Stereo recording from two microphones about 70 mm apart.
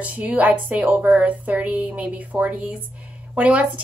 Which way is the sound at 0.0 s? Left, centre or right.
Centre.